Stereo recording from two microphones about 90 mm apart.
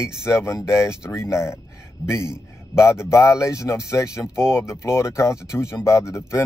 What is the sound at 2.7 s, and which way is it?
Speech, 30° left (ahead or behind).